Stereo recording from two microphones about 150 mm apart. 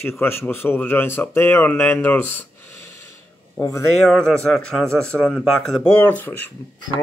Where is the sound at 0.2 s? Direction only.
15° left (ahead or behind).